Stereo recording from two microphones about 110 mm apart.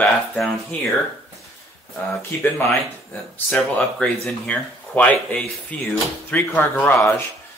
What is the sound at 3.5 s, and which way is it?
Speech, 5° left (ahead or behind).